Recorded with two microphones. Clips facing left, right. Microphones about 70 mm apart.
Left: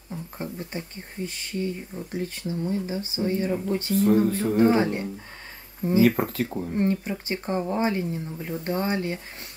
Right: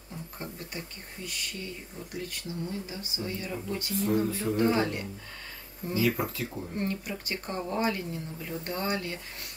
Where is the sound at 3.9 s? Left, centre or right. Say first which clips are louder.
Left 7 dB; left.